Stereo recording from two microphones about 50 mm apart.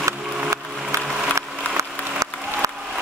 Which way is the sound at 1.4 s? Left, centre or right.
Right.